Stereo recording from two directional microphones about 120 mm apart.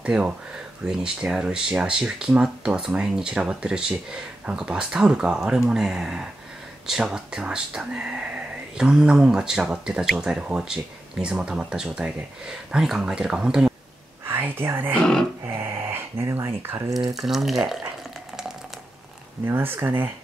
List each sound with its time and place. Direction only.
0.0 s speech: 10° right (ahead or behind)
14.2 s speech: 20° right (ahead or behind)
15.0 s speech: 5° left (ahead or behind)
15.4 s speech: 20° right (ahead or behind)
17.1 s speech: centre (ahead or behind)
19.4 s speech: 20° right (ahead or behind)